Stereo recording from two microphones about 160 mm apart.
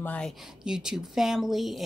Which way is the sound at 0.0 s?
10° left (ahead or behind).